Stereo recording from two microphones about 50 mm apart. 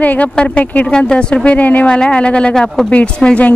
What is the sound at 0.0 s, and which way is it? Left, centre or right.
A woman's voice, left.